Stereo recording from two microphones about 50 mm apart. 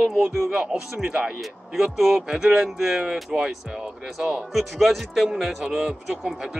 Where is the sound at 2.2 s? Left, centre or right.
Centre.